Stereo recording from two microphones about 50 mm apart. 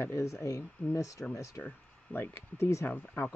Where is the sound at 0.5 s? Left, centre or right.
Left.